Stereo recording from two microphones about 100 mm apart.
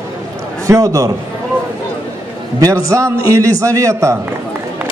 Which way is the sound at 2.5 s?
35° right (ahead or behind).